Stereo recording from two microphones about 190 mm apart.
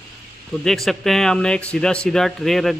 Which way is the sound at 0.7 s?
Centre (ahead or behind).